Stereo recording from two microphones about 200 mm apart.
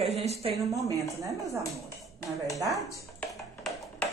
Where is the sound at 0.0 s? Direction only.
35° right (ahead or behind).